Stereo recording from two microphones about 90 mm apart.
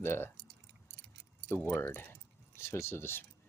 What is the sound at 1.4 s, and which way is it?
Speech, 25° left (ahead or behind).